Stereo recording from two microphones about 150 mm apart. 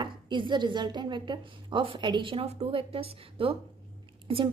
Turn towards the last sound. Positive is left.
turn(degrees=-35)  # may be behind; listen again after turning